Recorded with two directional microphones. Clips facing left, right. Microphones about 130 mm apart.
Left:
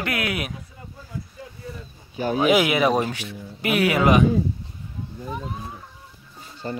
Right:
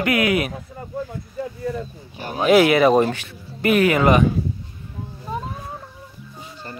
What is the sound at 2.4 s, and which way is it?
Speech, 5° left (ahead or behind).